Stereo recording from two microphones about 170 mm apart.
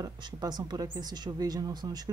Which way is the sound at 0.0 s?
25° right (ahead or behind).